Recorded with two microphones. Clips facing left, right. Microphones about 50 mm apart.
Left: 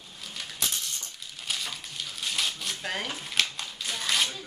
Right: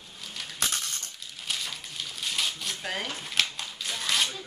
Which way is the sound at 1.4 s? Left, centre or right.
Centre.